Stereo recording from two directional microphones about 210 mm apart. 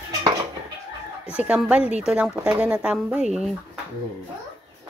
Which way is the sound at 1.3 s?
5° right (ahead or behind).